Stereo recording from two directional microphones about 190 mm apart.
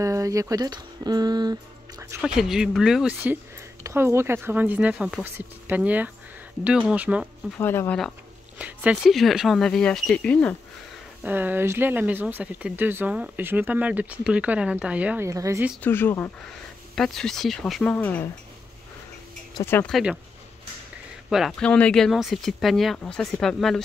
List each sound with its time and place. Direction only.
0.0 s speech: 15° right (ahead or behind)
2.2 s speech: centre (ahead or behind)
7.5 s speech: 10° left (ahead or behind)
8.5 s speech: 5° right (ahead or behind)
11.2 s speech: 10° right (ahead or behind)
15.8 s speech: 10° left (ahead or behind)
19.5 s speech: 10° left (ahead or behind)
21.3 s speech: centre (ahead or behind)